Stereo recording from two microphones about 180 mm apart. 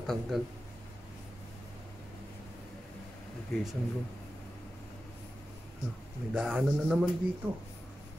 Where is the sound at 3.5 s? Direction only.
Centre (ahead or behind).